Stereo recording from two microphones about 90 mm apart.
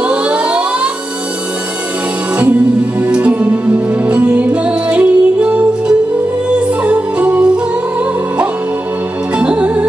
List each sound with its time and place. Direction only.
0.0 s a sound: 15° right (ahead or behind)
3.0 s music: 15° right (ahead or behind)
9.4 s music: 15° right (ahead or behind)